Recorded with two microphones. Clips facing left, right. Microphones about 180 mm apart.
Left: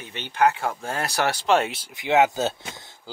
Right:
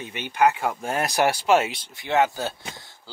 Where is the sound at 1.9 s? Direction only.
20° left (ahead or behind).